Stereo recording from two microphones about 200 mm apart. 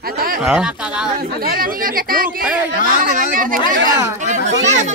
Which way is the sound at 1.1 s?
45° right (ahead or behind).